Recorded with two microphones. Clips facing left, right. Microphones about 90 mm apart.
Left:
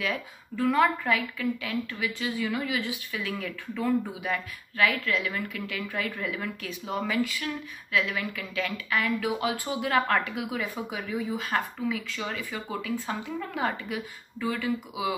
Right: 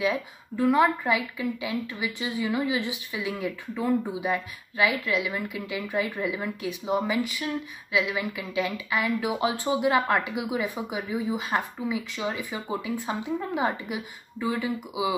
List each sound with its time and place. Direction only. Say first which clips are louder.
0.0 s speech: right 5 dB; 15° right (ahead or behind)